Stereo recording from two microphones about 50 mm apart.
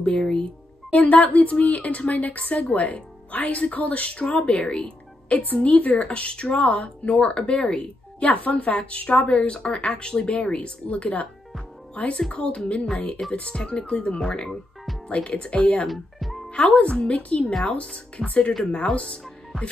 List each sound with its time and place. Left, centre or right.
0.2 s speech: centre
0.9 s a woman's voice: left
5.6 s a woman's voice: left
14.2 s speech: centre
15.0 s a woman's voice: left
15.9 s music: centre
16.5 s a woman's voice: left